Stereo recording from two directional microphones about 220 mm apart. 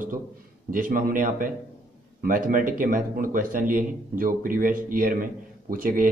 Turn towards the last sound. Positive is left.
turn(degrees=-40)  # may be behind; listen again after turning